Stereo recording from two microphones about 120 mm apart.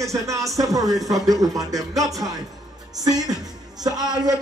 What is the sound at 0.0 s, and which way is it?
A man's voice, 25° right (ahead or behind).